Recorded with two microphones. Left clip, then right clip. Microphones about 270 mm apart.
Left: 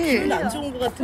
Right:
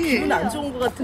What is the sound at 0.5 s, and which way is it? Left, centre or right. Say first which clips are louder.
Speech: right 1 dB; right.